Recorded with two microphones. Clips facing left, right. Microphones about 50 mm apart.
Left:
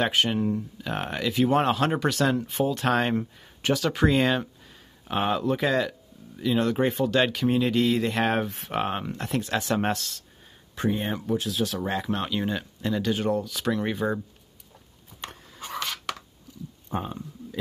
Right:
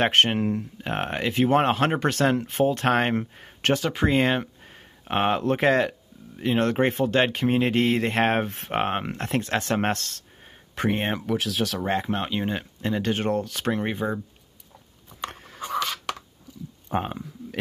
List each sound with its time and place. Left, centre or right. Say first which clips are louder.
0.0 s speech: right 3 dB; right
0.7 s speech: right 2 dB; right
3.7 s speech: even; right
4.7 s speech: right 3 dB; right
7.1 s speech: right 1 dB; right
10.7 s speech: right 2 dB; right
11.8 s speech: right 2 dB; right
13.0 s speech: right 1 dB; right
14.0 s speech: left 2 dB; centre
15.2 s a sound: right 6 dB; right
16.9 s speech: right 4 dB; right